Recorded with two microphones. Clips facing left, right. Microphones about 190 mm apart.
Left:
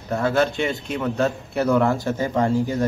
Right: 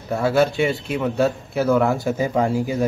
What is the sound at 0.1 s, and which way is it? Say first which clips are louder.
A man's voice: right 2 dB; 5° right (ahead or behind).